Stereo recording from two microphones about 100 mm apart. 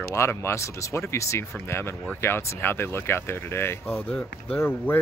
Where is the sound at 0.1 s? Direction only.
25° left (ahead or behind).